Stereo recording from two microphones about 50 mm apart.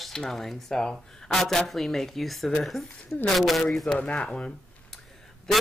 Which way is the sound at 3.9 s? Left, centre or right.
Left.